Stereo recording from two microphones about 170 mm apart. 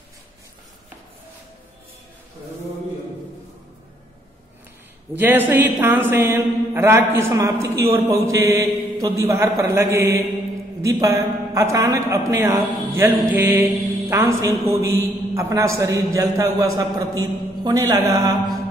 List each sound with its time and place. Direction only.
5.1 s a man's voice: 10° right (ahead or behind)